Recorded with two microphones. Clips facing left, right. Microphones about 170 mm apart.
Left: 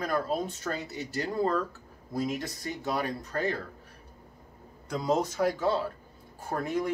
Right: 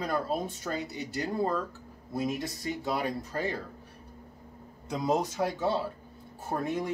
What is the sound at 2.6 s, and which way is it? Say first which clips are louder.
Speech: right 1 dB; 20° right (ahead or behind).